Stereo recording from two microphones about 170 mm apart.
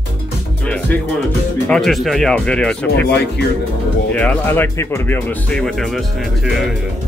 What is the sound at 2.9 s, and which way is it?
Speech, 75° left (ahead or behind).